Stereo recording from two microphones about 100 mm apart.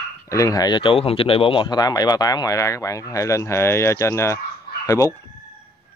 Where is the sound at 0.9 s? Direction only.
70° left (ahead or behind).